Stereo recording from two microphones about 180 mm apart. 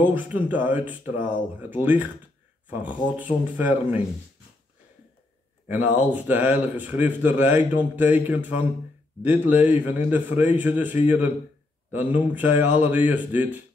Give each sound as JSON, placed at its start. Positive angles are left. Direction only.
{"t": 0.0, "sound": "a man's voice", "side_deg": -10}
{"t": 5.7, "sound": "a man's voice", "side_deg": -10}